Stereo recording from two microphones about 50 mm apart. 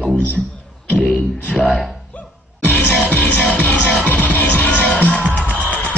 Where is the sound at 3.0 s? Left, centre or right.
Left.